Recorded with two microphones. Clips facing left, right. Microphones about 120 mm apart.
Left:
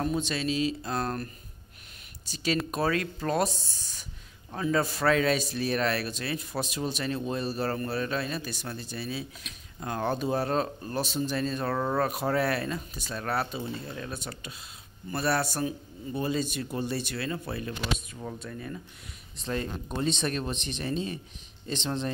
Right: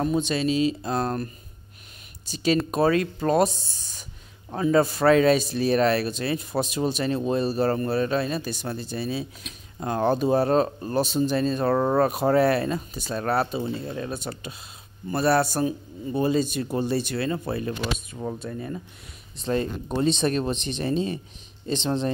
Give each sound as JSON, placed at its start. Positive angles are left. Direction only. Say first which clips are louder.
{"t": 0.0, "sound": "speech", "louder": "right 5 dB", "side_deg": -20}